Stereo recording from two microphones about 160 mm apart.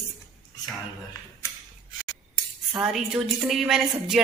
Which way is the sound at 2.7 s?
5° right (ahead or behind).